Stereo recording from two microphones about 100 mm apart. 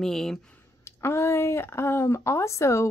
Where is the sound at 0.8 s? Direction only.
25° left (ahead or behind).